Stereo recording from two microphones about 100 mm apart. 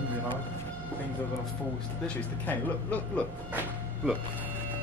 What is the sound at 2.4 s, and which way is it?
Speech, 15° left (ahead or behind).